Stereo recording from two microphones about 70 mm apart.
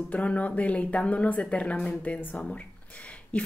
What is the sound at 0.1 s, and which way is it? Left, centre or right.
A woman's voice, centre.